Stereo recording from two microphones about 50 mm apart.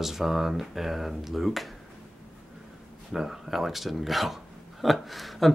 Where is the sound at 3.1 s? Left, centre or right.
Centre.